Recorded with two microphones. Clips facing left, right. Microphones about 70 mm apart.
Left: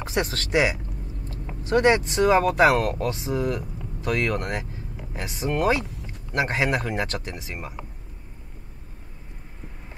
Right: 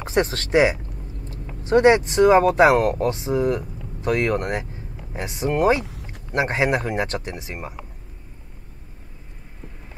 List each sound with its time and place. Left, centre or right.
0.0 s speech: right